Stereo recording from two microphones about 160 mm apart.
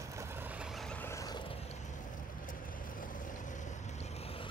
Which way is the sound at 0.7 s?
5° left (ahead or behind).